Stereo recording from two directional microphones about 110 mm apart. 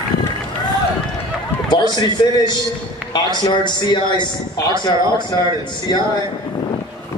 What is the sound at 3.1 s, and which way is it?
A man's voice, 40° left (ahead or behind).